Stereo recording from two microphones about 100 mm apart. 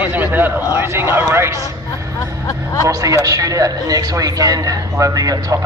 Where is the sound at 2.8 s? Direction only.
35° right (ahead or behind).